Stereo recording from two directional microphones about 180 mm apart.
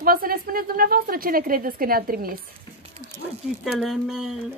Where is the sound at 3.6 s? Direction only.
Centre (ahead or behind).